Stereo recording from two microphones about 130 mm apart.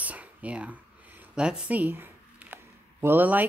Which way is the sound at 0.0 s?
10° right (ahead or behind).